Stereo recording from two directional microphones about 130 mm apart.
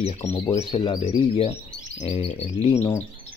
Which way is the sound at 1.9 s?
55° left (ahead or behind).